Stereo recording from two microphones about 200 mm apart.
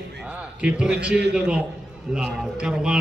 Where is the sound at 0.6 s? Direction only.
5° right (ahead or behind).